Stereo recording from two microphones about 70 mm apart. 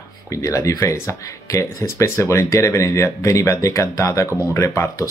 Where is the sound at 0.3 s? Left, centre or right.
Left.